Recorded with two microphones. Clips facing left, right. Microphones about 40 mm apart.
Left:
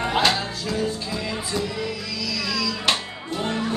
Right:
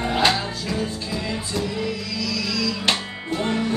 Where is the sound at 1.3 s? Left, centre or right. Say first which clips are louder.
Even; centre.